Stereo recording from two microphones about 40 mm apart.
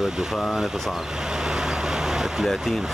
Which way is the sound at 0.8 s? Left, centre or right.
Centre.